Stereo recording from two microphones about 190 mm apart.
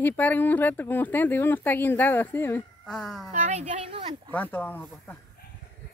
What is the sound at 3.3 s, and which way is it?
Speech, 40° right (ahead or behind).